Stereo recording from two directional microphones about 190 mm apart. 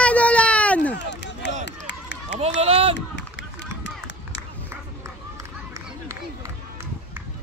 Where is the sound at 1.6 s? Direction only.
70° left (ahead or behind).